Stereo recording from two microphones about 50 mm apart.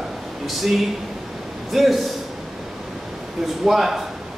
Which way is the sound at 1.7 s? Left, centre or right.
Centre.